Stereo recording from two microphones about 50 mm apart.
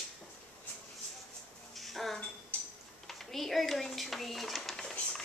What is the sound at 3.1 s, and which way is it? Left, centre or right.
Speech, centre.